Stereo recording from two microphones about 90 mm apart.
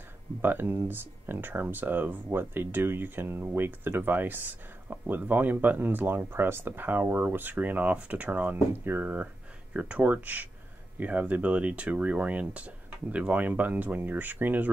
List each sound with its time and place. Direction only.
0.4 s speech: 20° right (ahead or behind)